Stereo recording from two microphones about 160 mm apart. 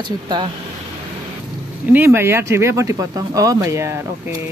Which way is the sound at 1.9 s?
15° right (ahead or behind).